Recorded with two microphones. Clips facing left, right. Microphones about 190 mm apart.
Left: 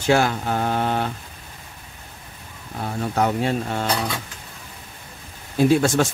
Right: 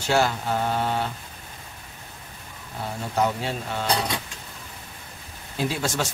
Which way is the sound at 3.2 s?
55° left (ahead or behind).